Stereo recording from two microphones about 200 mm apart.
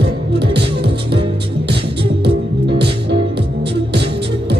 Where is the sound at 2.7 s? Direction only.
55° right (ahead or behind).